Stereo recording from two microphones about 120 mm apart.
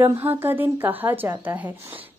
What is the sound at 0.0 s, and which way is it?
A woman's voice, 20° right (ahead or behind).